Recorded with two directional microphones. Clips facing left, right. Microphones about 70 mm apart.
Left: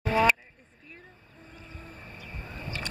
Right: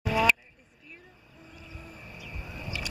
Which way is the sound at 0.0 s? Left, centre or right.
Left.